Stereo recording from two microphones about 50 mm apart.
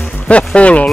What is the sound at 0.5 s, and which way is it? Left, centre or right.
Speech, left.